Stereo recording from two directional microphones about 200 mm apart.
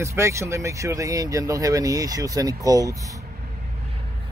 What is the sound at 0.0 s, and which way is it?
Speech, 15° right (ahead or behind).